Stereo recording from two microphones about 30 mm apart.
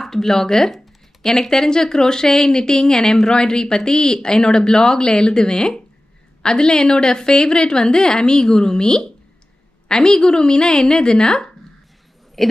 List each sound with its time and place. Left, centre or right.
0.0 s speech: centre
12.4 s speech: centre